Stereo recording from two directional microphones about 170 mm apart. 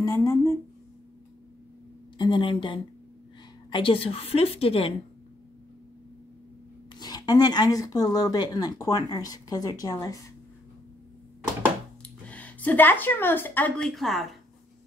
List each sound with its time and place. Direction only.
0.0 s speech: 15° left (ahead or behind)
2.1 s a woman's voice: 30° left (ahead or behind)
7.0 s speech: 25° left (ahead or behind)
12.0 s speech: 10° left (ahead or behind)